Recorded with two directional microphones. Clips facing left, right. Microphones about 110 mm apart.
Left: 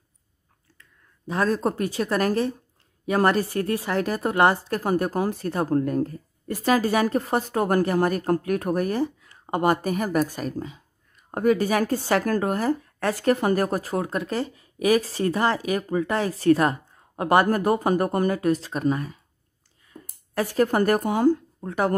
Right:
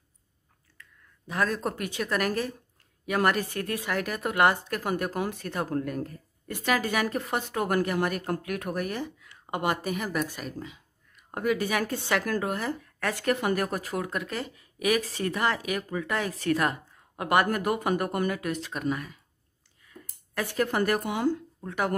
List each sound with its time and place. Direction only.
0.7 s a woman's voice: 30° left (ahead or behind)